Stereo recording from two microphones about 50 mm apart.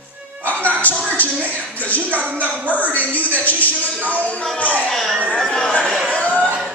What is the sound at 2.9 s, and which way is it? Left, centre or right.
A woman's voice, left.